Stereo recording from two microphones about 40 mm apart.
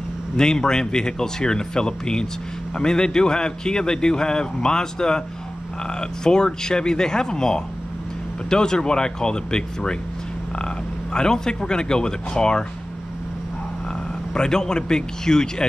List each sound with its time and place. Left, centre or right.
0.4 s a man's voice: centre
11.1 s a man's voice: centre
14.3 s speech: centre